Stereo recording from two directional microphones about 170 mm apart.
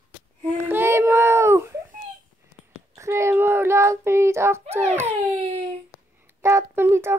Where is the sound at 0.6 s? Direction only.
15° right (ahead or behind).